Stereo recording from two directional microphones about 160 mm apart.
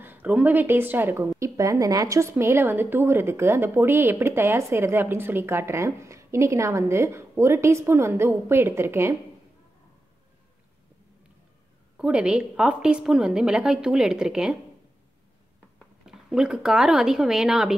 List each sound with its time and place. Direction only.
0.0 s a woman's voice: 10° right (ahead or behind)
12.0 s a woman's voice: 5° right (ahead or behind)
16.1 s a woman's voice: 5° right (ahead or behind)